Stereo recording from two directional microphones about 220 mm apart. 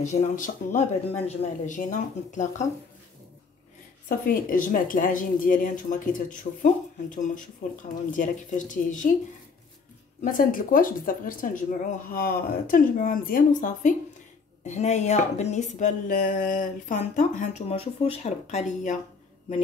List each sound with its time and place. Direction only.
0.0 s speech: 35° left (ahead or behind)
4.3 s speech: 40° left (ahead or behind)
10.2 s speech: 40° left (ahead or behind)